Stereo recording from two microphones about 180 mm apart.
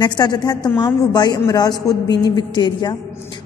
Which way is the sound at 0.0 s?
25° left (ahead or behind).